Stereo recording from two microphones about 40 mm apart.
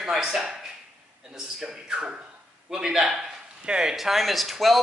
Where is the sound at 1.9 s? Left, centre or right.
Right.